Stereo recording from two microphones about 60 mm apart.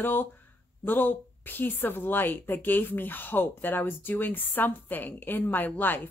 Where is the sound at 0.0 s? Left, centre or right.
Left.